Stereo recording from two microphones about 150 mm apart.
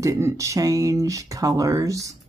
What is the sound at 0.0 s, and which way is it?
Speech, 20° right (ahead or behind).